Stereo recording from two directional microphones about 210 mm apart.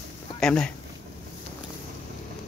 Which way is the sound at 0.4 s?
5° left (ahead or behind).